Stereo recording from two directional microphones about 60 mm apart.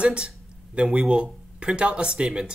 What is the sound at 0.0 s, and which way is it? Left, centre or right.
Speech, centre.